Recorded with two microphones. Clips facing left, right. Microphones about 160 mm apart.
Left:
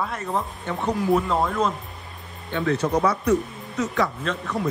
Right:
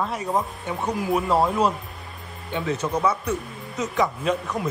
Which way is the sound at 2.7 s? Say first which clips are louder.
Left 2 dB; 65° left (ahead or behind).